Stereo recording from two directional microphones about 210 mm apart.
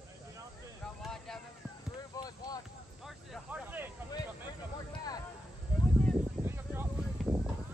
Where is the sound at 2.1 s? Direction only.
20° left (ahead or behind).